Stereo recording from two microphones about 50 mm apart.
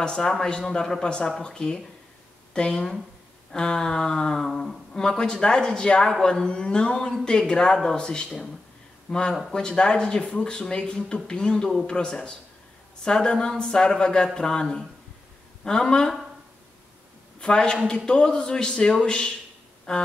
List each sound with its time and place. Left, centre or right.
0.0 s speech: centre
17.4 s a man's voice: centre